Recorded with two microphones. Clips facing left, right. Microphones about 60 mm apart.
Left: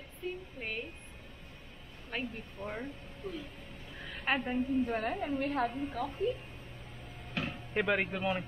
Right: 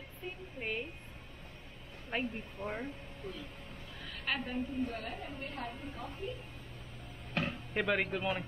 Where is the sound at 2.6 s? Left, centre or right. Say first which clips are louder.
Even; centre.